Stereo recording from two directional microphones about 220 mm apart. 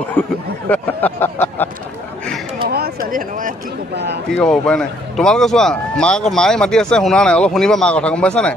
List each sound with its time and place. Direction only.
0.2 s a sound: 5° left (ahead or behind)
2.7 s speech: 45° right (ahead or behind)
4.3 s speech: 5° left (ahead or behind)